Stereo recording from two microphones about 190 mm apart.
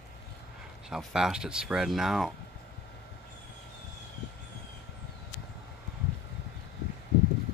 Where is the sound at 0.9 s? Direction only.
5° right (ahead or behind).